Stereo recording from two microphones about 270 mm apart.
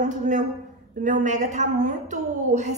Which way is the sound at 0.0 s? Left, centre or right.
Right.